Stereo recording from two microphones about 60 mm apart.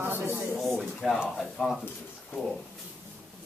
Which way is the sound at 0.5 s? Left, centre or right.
Centre.